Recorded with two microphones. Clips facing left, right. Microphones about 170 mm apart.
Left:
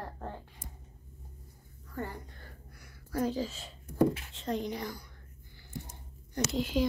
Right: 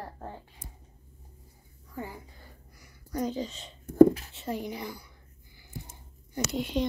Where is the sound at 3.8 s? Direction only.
45° right (ahead or behind).